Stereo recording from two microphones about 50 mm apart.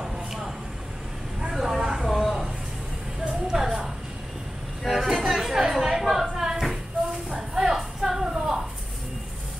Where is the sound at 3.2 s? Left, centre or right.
Centre.